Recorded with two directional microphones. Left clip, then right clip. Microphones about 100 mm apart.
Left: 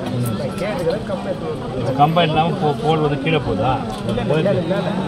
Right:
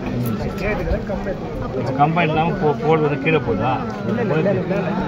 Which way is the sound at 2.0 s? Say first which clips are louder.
Left 2 dB; 15° left (ahead or behind).